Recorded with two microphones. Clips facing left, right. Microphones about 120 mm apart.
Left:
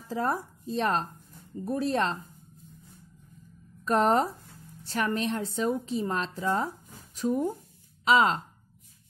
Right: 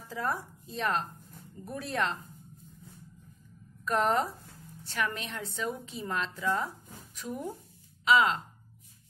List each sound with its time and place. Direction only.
0.1 s a woman's voice: 35° left (ahead or behind)
3.8 s a woman's voice: 35° left (ahead or behind)